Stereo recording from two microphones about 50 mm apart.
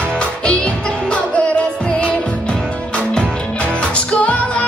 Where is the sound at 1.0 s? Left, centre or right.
Left.